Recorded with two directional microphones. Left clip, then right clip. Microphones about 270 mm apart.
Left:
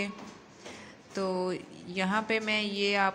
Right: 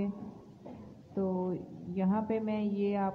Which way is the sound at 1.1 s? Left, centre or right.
Left.